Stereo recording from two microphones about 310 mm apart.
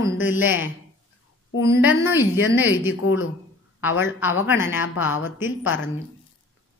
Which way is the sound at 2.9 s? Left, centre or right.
Left.